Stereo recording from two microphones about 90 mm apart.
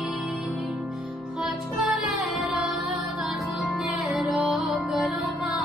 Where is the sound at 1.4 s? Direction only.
Centre (ahead or behind).